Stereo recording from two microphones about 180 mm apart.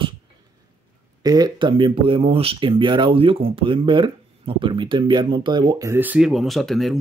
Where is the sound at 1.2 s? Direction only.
20° right (ahead or behind).